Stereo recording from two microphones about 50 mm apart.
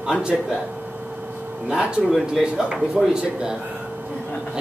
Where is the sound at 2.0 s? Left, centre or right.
Centre.